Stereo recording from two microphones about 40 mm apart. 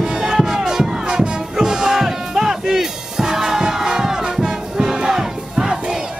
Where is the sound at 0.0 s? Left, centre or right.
Centre.